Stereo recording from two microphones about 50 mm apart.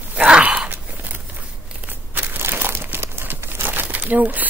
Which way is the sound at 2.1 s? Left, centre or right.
Right.